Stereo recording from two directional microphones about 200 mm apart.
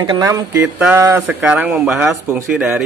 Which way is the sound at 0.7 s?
10° right (ahead or behind).